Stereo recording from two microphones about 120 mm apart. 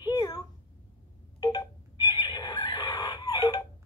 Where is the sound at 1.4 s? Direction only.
35° left (ahead or behind).